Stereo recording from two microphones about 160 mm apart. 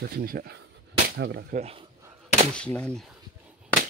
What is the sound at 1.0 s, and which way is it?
Speech, 85° right.